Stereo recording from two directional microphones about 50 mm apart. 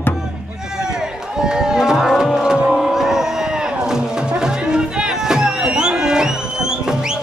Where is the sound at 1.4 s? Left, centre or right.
Centre.